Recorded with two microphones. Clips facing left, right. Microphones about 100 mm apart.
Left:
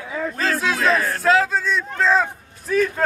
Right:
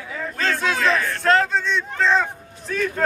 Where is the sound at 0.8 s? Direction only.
40° left (ahead or behind).